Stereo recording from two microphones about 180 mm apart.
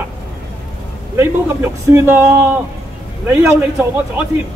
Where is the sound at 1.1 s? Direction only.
15° right (ahead or behind).